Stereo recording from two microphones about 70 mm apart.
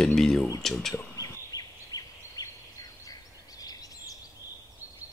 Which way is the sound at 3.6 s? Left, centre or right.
Left.